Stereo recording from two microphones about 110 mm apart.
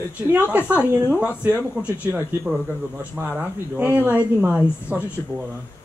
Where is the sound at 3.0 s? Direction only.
15° right (ahead or behind).